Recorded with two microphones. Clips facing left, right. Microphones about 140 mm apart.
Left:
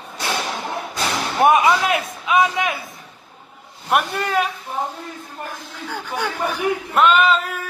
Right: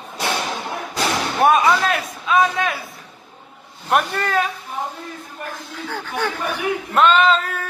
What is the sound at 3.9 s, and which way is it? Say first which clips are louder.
Speech: even; 5° left (ahead or behind).